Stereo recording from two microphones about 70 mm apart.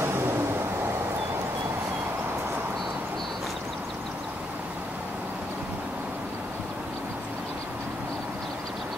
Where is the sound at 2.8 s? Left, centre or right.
Centre.